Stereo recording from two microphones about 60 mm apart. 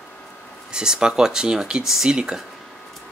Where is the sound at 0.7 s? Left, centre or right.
Centre.